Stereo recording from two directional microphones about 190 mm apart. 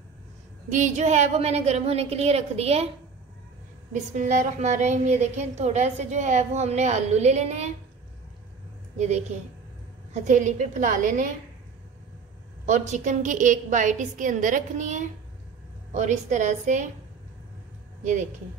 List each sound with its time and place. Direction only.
0.7 s a woman's voice: 40° right (ahead or behind)
3.9 s a woman's voice: 40° right (ahead or behind)
8.9 s a woman's voice: 35° right (ahead or behind)
10.2 s a woman's voice: 40° right (ahead or behind)
12.6 s a woman's voice: 40° right (ahead or behind)